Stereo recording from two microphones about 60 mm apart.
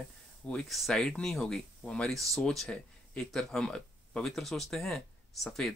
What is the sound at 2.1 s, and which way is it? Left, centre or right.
Speech, centre.